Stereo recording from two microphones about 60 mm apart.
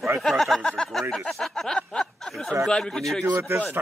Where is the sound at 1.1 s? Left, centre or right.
Centre.